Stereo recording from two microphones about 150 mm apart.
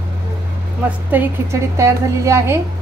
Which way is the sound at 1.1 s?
15° right (ahead or behind).